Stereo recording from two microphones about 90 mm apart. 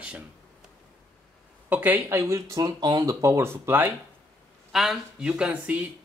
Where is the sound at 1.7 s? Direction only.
20° right (ahead or behind).